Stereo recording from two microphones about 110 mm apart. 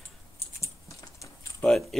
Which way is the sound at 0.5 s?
30° left (ahead or behind).